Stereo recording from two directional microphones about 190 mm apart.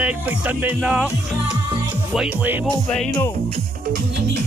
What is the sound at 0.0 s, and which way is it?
Speech, 5° right (ahead or behind).